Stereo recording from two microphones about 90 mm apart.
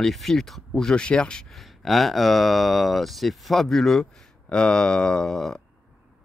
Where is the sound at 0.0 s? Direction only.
Centre (ahead or behind).